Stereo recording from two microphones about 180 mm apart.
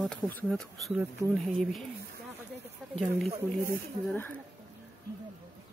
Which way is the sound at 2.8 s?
Centre (ahead or behind).